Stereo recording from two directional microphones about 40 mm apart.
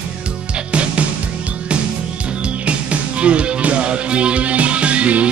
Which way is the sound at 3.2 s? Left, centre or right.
Right.